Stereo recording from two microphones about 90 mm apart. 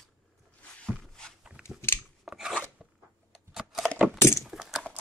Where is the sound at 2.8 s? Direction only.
10° right (ahead or behind).